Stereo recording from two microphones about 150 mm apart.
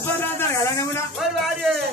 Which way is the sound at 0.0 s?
15° left (ahead or behind).